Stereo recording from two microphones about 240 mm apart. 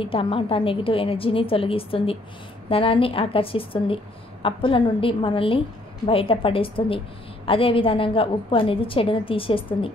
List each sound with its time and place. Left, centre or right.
0.0 s a woman's voice: left